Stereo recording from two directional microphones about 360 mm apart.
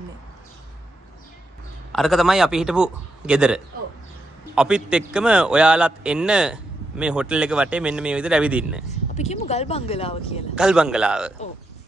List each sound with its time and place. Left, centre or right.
1.9 s a man's voice: centre
9.1 s speech: centre
10.5 s a man's voice: centre